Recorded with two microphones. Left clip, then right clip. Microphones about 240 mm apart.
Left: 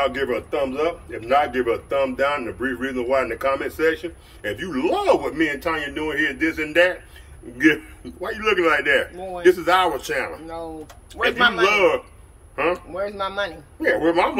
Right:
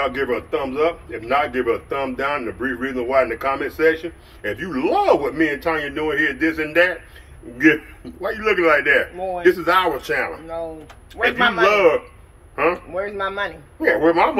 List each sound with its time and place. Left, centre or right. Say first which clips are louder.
0.0 s a man's voice: right 1 dB; centre